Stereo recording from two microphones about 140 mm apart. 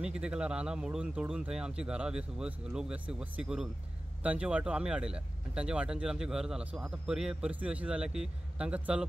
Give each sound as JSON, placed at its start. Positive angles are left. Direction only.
{"t": 0.0, "sound": "speech", "side_deg": -5}